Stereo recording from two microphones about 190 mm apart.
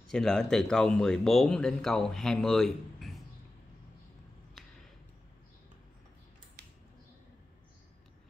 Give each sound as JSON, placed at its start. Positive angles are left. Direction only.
{"t": 0.1, "sound": "speech", "side_deg": 5}